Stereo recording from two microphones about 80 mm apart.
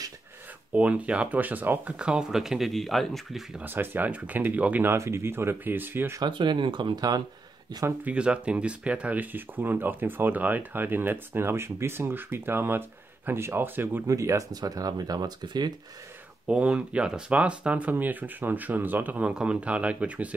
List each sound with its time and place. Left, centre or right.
0.7 s speech: centre
2.0 s speech: centre
3.6 s speech: right
4.9 s speech: right
6.2 s speech: right
8.0 s speech: centre
14.0 s speech: right
16.4 s speech: centre